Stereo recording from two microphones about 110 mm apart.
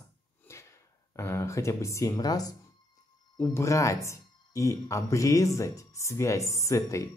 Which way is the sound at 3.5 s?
30° left (ahead or behind).